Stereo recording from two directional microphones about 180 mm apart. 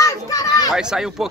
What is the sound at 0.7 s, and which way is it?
Speech, 5° right (ahead or behind).